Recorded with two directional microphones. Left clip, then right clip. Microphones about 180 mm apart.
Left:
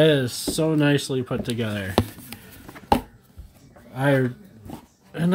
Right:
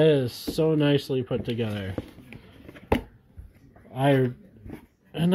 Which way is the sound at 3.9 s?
5° right (ahead or behind).